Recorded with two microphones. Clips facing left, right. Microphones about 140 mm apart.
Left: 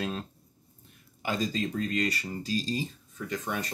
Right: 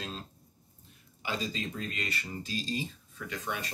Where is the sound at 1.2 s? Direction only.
45° left (ahead or behind).